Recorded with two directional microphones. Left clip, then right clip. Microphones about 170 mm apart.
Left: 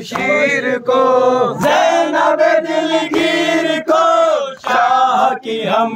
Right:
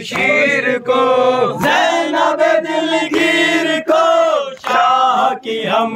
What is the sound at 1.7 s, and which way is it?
Choir, 25° left (ahead or behind).